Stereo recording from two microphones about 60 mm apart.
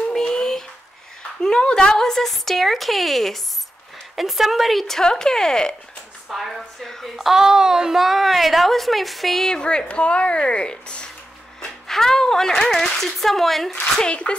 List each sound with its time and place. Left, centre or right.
0.1 s a sound: centre
1.4 s a woman's voice: centre
6.2 s a woman's voice: centre
7.2 s a woman's voice: centre
13.9 s speech: centre